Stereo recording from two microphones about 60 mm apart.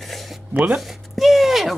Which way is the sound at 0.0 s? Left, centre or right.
Centre.